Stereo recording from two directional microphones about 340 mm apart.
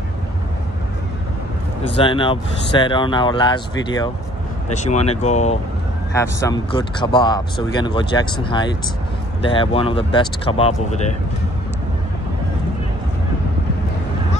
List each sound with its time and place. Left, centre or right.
2.0 s speech: centre
6.1 s speech: centre